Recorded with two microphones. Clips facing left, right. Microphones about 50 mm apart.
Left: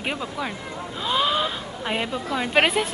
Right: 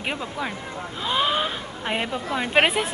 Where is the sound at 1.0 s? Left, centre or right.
Centre.